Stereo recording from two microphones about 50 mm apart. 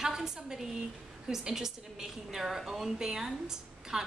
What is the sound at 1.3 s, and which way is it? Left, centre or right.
A woman's voice, centre.